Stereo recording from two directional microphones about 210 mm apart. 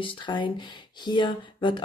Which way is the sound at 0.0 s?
20° left (ahead or behind).